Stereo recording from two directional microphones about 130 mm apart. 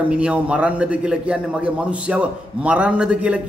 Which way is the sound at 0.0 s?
10° right (ahead or behind).